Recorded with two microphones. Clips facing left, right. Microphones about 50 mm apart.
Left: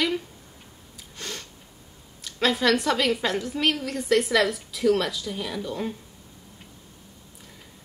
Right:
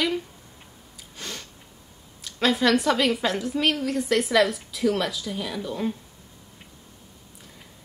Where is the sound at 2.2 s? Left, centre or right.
Centre.